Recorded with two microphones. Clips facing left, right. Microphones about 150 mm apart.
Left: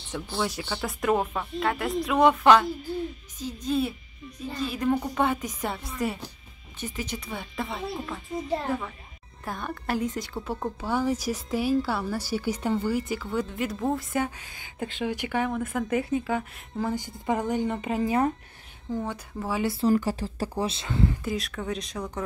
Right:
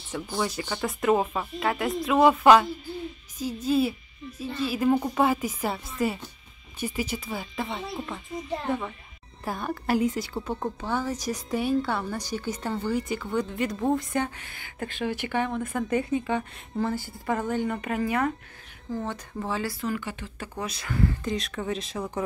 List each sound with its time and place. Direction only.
0.4 s a woman's voice: centre (ahead or behind)
15.2 s a woman's voice: 5° left (ahead or behind)
16.9 s speech: 15° left (ahead or behind)
18.0 s speech: 30° left (ahead or behind)
18.9 s speech: 10° left (ahead or behind)
19.6 s speech: 30° left (ahead or behind)
21.2 s a woman's voice: 5° left (ahead or behind)